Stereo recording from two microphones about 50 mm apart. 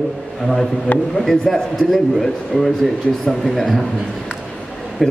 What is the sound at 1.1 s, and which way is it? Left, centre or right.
A man's voice, centre.